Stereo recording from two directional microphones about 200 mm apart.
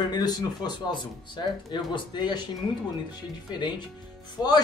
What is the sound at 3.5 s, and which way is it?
Speech, 20° left (ahead or behind).